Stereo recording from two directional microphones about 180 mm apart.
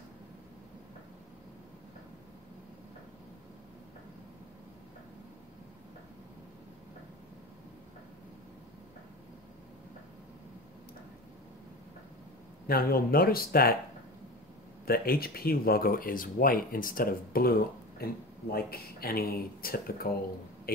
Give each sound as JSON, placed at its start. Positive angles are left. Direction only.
{"t": 12.6, "sound": "speech", "side_deg": 55}
{"t": 14.9, "sound": "speech", "side_deg": 55}